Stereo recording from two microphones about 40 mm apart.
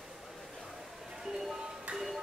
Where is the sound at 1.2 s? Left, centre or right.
Centre.